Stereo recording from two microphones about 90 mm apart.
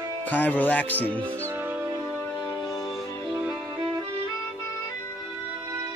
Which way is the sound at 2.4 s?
45° left (ahead or behind).